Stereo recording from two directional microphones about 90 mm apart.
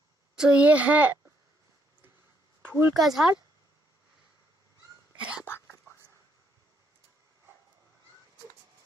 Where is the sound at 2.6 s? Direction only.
30° right (ahead or behind).